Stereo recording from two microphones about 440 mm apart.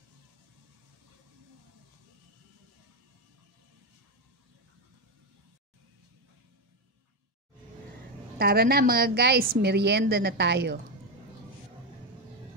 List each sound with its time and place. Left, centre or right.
8.4 s a woman's voice: right